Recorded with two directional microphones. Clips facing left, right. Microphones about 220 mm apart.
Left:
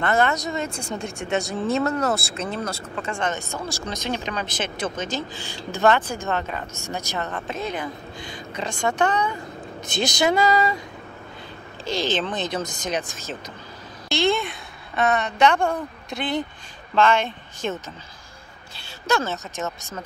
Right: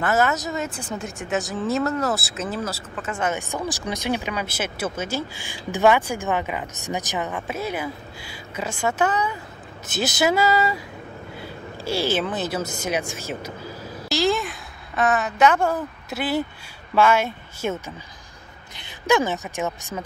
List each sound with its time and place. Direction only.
0.0 s speech: 5° right (ahead or behind)
11.8 s a woman's voice: 10° right (ahead or behind)
18.8 s a woman's voice: 15° right (ahead or behind)